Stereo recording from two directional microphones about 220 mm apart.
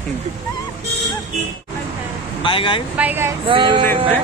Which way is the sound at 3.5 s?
25° right (ahead or behind).